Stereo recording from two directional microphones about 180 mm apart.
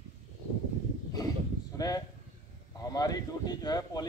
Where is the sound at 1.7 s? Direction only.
20° left (ahead or behind).